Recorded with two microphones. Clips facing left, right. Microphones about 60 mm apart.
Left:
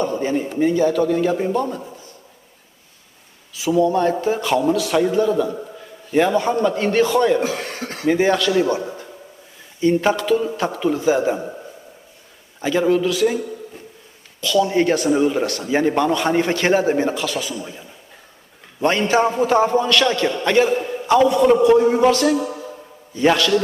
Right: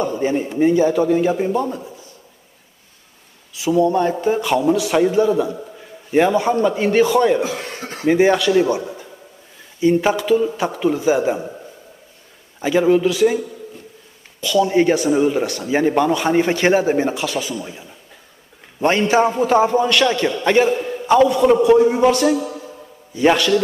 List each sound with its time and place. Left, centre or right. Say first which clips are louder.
0.2 s a man's voice: right 2 dB; centre
3.5 s a man's voice: right 1 dB; centre
7.4 s chuckle: left 1 dB; left
8.1 s a man's voice: right 3 dB; centre
12.5 s a man's voice: right 2 dB; centre
14.4 s a man's voice: right 2 dB; centre
20.7 s a man's voice: right 1 dB; centre
22.4 s a sound: left 1 dB; left
23.1 s a man's voice: right 1 dB; centre